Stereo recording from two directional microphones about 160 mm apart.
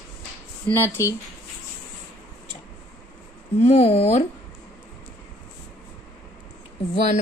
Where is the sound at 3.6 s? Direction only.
40° left (ahead or behind).